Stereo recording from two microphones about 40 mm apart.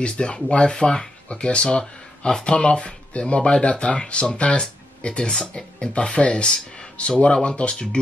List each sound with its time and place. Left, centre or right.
0.0 s speech: left